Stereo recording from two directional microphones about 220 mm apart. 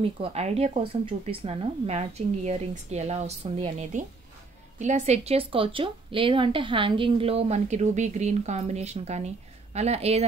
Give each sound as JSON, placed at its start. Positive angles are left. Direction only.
{"t": 0.0, "sound": "a woman's voice", "side_deg": -25}